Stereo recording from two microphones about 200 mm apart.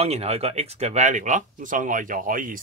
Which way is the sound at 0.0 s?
30° right (ahead or behind).